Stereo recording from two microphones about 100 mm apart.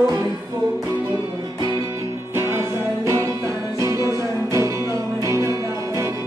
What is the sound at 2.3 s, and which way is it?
Music, 25° right (ahead or behind).